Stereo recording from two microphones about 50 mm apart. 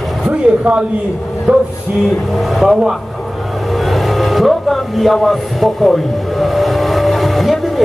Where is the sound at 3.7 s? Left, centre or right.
Centre.